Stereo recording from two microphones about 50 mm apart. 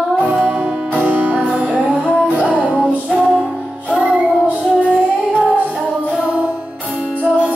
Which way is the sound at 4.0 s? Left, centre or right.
Right.